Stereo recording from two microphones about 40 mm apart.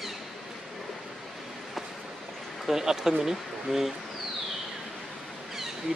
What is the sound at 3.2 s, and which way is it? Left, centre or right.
Speech, centre.